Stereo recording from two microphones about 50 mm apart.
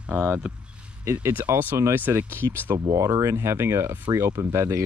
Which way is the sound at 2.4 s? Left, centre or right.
Right.